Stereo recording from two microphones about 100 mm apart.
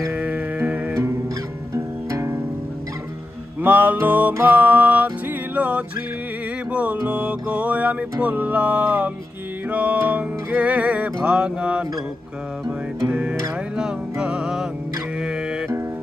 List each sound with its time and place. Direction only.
0.1 s music: 15° right (ahead or behind)
1.7 s music: 30° right (ahead or behind)
3.6 s music: 20° right (ahead or behind)